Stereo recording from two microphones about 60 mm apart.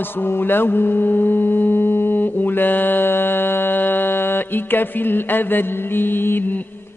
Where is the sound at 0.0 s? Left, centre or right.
Left.